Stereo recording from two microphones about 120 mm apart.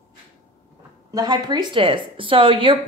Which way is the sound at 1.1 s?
35° right (ahead or behind).